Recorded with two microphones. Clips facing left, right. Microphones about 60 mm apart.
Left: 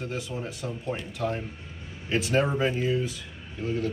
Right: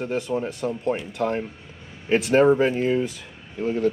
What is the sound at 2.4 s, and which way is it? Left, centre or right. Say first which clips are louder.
Speech: right 8 dB; right.